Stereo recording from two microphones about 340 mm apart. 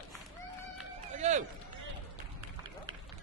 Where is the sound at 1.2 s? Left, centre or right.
Right.